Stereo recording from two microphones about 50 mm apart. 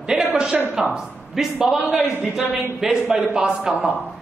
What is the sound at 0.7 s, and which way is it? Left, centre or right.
A man's voice, centre.